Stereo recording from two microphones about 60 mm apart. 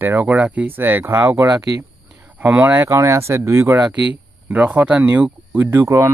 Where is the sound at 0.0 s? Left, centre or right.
Right.